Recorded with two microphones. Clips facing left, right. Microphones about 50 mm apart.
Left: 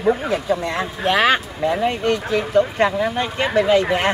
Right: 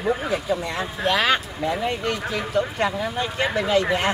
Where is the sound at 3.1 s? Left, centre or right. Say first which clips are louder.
Left 4 dB; left.